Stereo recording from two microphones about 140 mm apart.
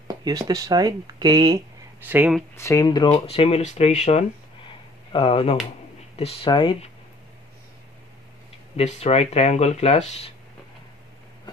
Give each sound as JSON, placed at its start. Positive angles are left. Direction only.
{"t": 0.1, "sound": "speech", "side_deg": -25}
{"t": 2.0, "sound": "speech", "side_deg": -15}
{"t": 2.5, "sound": "speech", "side_deg": 20}
{"t": 5.1, "sound": "speech", "side_deg": 40}
{"t": 8.7, "sound": "speech", "side_deg": 50}